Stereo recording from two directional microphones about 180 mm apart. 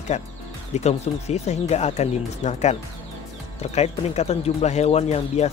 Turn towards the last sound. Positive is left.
turn(degrees=35)  # may be behind; listen again after turning